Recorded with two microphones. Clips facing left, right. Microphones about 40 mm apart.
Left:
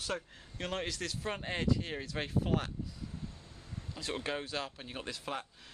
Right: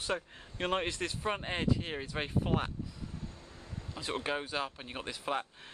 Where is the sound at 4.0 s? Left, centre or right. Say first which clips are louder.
Right 2 dB; centre.